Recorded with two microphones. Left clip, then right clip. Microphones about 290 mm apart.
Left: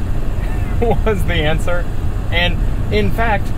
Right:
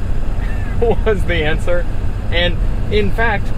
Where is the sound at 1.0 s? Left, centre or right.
Centre.